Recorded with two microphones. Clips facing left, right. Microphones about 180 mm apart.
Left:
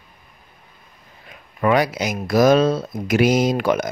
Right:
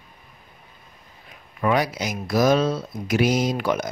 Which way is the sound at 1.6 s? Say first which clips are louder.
Left 4 dB; 80° left.